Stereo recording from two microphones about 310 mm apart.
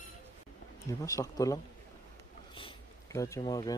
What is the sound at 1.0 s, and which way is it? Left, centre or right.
Speech, centre.